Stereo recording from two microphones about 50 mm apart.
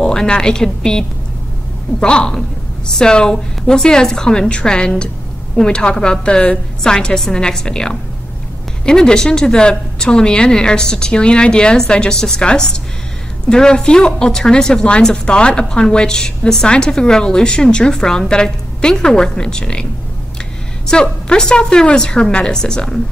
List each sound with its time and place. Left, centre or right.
0.0 s speech: centre